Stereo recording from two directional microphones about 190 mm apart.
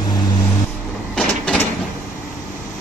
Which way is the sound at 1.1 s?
5° left (ahead or behind).